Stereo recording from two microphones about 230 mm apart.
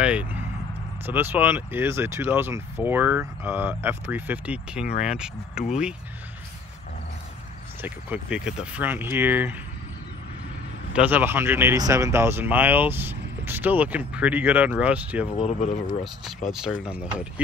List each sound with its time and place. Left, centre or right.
0.0 s vehicle: centre
1.0 s speech: centre
7.8 s speech: centre
10.9 s speech: centre
15.3 s speech: left
16.6 s speech: centre